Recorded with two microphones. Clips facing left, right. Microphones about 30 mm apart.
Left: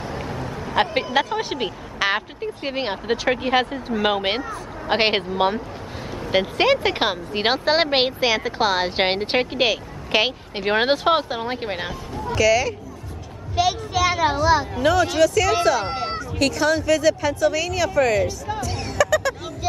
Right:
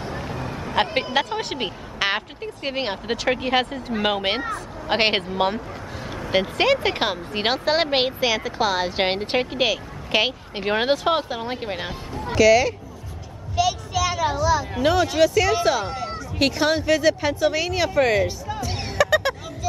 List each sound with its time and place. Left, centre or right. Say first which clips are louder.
0.4 s vehicle: left 1 dB; right
1.1 s a woman's voice: left 2 dB; centre
12.4 s speech: right 3 dB; centre
13.6 s a child's voice: left 2 dB; centre; by 14.7 s left
14.8 s speech: right 3 dB; centre
18.6 s music: even; right